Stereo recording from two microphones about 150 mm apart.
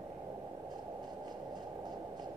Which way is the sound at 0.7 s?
30° right (ahead or behind).